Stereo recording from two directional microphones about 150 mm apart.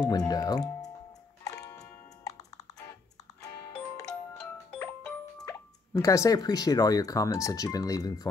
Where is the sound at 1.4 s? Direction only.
25° left (ahead or behind).